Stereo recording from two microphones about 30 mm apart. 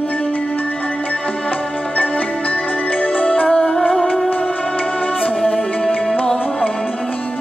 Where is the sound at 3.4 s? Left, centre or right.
Left.